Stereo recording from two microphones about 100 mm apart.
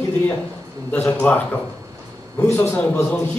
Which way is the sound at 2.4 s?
20° left (ahead or behind).